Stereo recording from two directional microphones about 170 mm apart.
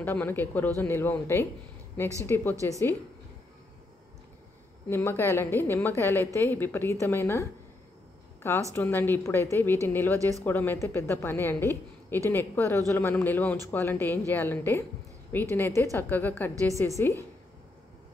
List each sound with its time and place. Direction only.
0.0 s a woman's voice: 10° left (ahead or behind)
4.8 s a woman's voice: 15° left (ahead or behind)
8.7 s a woman's voice: 10° left (ahead or behind)
10.1 s speech: 20° right (ahead or behind)
10.4 s a woman's voice: 10° left (ahead or behind)